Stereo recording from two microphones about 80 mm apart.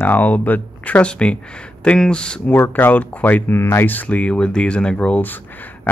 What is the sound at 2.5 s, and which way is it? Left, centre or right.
Speech, left.